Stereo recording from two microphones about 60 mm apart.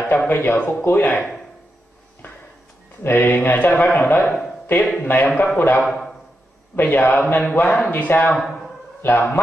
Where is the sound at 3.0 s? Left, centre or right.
Left.